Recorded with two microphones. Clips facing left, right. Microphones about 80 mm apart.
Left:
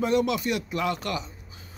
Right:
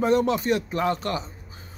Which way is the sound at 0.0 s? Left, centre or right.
Right.